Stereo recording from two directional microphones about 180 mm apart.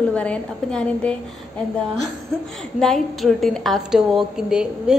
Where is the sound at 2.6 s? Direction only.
5° left (ahead or behind).